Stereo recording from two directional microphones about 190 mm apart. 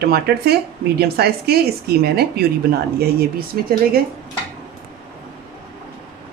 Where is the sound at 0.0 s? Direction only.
55° right (ahead or behind).